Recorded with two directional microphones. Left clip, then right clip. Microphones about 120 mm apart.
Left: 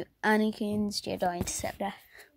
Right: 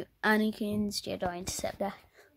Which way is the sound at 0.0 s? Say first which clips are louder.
Left 1 dB; 15° left (ahead or behind).